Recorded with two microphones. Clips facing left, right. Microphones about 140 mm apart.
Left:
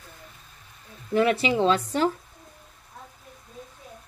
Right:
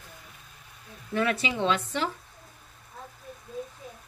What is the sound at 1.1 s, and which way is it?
Speech, 30° left (ahead or behind).